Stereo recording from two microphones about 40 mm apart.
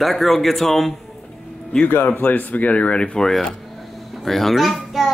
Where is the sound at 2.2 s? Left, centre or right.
Left.